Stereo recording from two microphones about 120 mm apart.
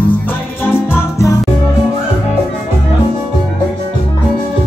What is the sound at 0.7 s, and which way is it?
Music, 20° left (ahead or behind).